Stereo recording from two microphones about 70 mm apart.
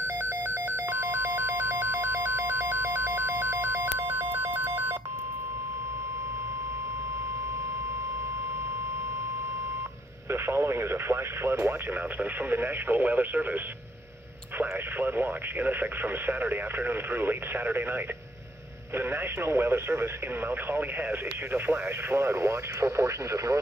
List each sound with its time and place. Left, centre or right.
0.0 s telephone bell ringing: right
4.2 s telephone dialing: right
10.3 s speech: right
14.6 s speech: right